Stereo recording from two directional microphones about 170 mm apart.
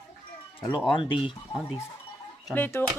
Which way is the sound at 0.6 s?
30° left (ahead or behind).